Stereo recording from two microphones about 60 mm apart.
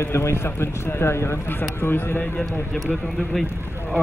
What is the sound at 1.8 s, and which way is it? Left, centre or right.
Speech, left.